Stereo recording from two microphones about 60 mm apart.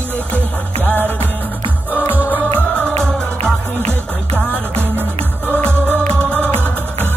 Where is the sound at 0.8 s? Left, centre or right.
Left.